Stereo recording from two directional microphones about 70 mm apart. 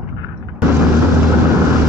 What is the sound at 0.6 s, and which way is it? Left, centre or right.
Vehicle, right.